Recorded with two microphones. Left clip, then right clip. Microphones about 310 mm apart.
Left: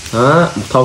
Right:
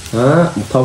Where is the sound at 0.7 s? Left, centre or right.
Left.